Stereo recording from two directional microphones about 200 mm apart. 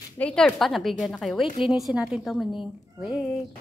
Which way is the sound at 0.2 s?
5° left (ahead or behind).